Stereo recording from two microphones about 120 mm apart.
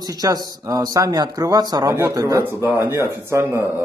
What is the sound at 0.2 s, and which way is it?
A man's voice, 30° right (ahead or behind).